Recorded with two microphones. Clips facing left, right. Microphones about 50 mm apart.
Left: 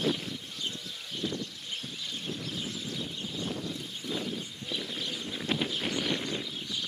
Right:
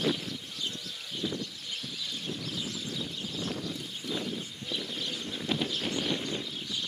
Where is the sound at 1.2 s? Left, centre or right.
Centre.